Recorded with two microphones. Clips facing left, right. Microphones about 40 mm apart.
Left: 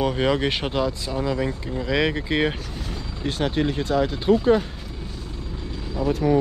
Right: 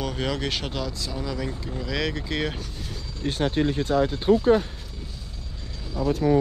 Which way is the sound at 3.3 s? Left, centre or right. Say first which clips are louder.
Even; left.